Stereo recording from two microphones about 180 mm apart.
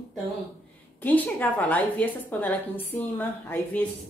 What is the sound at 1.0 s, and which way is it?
A woman's voice, 10° left (ahead or behind).